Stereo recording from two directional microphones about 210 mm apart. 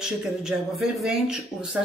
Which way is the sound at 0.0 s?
Centre (ahead or behind).